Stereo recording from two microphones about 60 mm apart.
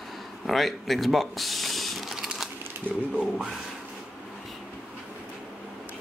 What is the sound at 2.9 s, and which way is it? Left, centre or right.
Speech, centre.